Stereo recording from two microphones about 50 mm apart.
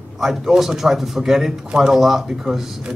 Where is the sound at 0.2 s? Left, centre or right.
Centre.